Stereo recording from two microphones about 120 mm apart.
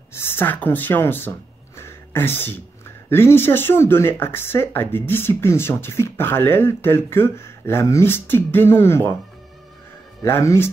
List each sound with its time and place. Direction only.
0.1 s speech: 20° left (ahead or behind)
1.8 s a sound: 20° left (ahead or behind)
3.1 s speech: 20° left (ahead or behind)
10.2 s speech: 25° left (ahead or behind)